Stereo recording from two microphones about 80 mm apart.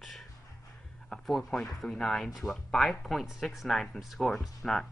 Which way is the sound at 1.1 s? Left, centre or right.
Centre.